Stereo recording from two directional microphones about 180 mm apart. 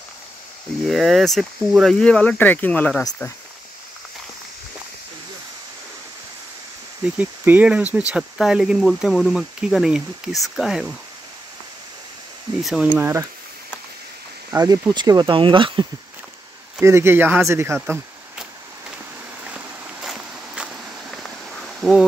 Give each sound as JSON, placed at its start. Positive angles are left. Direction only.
{"t": 0.8, "sound": "speech", "side_deg": 0}
{"t": 7.2, "sound": "speech", "side_deg": -10}
{"t": 12.6, "sound": "speech", "side_deg": -5}
{"t": 14.5, "sound": "speech", "side_deg": -20}
{"t": 16.8, "sound": "speech", "side_deg": -15}
{"t": 19.5, "sound": "vehicle", "side_deg": 0}